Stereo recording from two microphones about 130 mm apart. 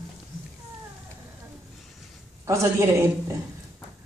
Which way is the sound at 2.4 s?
25° right (ahead or behind).